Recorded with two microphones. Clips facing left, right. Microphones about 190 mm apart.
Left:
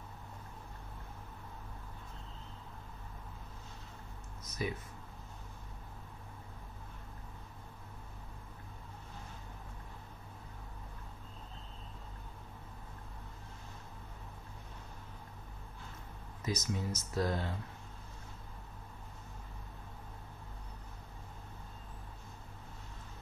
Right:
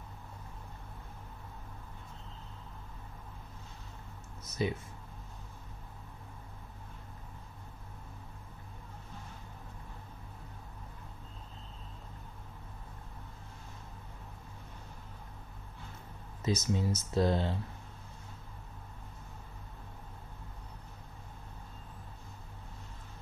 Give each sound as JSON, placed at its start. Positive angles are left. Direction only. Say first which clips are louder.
{"t": 4.6, "sound": "speech", "louder": "right 5 dB", "side_deg": -25}
{"t": 16.4, "sound": "speech", "louder": "right 5 dB", "side_deg": -25}